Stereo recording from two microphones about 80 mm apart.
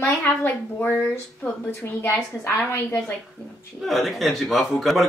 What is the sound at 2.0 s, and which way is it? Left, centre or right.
A woman's voice, left.